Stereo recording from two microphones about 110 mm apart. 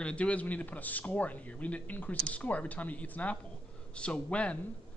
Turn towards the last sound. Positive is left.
turn(degrees=10)  # may be behind; listen again after turning